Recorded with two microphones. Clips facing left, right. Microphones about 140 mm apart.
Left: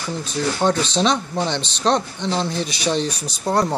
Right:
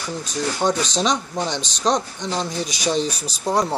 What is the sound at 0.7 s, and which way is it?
Speech, 15° right (ahead or behind).